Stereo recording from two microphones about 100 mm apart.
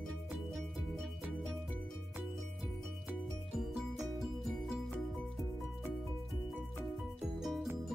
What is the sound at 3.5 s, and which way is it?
Music, centre (ahead or behind).